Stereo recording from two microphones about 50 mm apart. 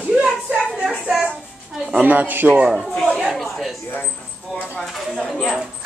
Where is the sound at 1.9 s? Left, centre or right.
Right.